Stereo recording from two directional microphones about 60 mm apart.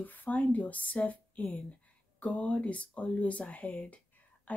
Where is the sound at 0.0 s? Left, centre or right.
Left.